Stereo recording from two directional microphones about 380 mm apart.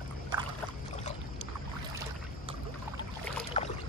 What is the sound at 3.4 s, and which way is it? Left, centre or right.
Boat, centre.